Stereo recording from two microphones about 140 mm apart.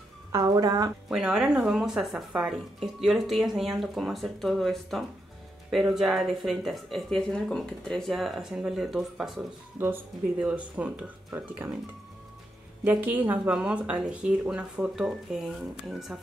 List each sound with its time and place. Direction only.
0.3 s a woman's voice: 25° right (ahead or behind)
1.0 s speech: 5° right (ahead or behind)
12.8 s speech: 10° right (ahead or behind)